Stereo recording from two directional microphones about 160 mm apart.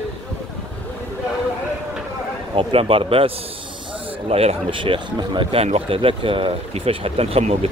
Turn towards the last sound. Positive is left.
turn(degrees=-40)  # may be behind; listen again after turning